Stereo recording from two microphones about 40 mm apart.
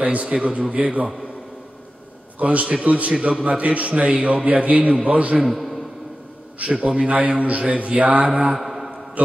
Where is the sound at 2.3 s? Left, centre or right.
Right.